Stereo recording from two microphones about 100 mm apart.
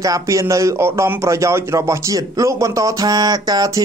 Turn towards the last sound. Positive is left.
turn(degrees=-40)  # may be behind; listen again after turning